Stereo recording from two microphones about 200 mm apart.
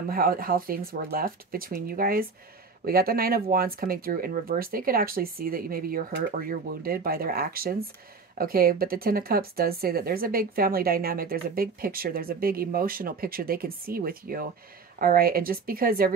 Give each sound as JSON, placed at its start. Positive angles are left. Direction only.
{"t": 0.1, "sound": "speech", "side_deg": -50}